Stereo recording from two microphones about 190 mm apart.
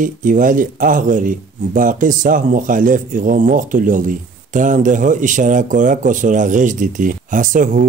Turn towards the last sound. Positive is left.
turn(degrees=-45)  # may be behind; listen again after turning